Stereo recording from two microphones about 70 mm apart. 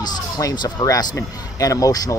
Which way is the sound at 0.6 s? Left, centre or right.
Left.